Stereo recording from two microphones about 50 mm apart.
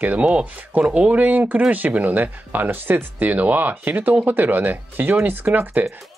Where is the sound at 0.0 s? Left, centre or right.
Right.